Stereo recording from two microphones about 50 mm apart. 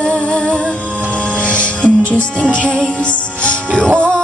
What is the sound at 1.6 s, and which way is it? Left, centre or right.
Music, left.